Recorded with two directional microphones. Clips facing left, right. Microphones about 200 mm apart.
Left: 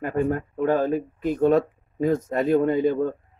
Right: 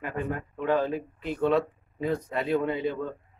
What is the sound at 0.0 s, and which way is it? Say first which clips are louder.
Speech: left 8 dB; 45° left (ahead or behind).